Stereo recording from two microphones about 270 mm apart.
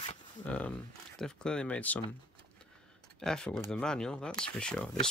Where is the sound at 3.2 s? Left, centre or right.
Centre.